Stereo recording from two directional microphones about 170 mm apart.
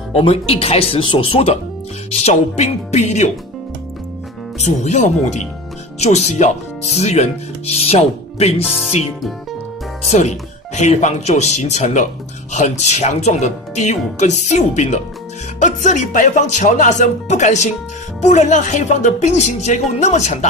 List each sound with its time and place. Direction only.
0.1 s speech: 35° left (ahead or behind)
4.6 s speech: 45° left (ahead or behind)
10.0 s speech: 40° left (ahead or behind)